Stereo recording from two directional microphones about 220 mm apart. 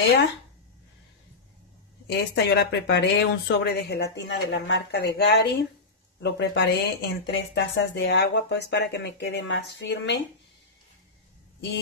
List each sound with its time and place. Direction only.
2.0 s speech: 50° left (ahead or behind)